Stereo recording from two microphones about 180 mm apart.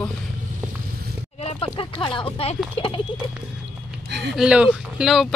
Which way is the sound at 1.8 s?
30° left (ahead or behind).